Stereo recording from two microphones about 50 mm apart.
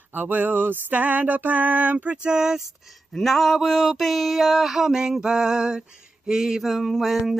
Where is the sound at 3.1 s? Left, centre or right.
Centre.